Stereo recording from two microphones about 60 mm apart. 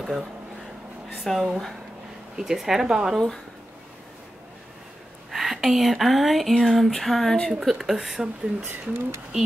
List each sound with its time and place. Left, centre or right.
0.0 s speech: centre
1.3 s speech: centre
2.3 s speech: centre
5.3 s speech: centre
8.6 s speech: right